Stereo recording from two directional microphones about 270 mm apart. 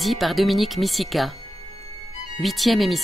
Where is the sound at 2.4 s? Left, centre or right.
Centre.